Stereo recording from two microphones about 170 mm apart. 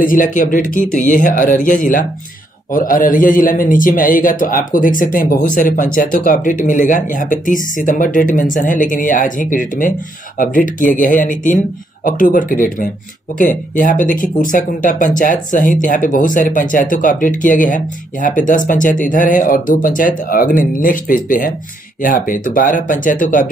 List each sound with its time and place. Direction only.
0.0 s speech: 50° left (ahead or behind)